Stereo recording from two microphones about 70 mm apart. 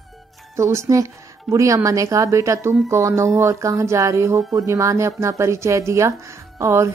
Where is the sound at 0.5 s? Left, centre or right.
Right.